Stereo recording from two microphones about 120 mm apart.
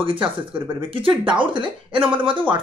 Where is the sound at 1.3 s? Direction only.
45° right (ahead or behind).